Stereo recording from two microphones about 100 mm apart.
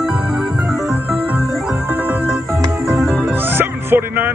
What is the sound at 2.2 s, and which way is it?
Music, centre (ahead or behind).